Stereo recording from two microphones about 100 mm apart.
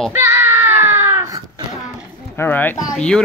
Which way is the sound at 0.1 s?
25° right (ahead or behind).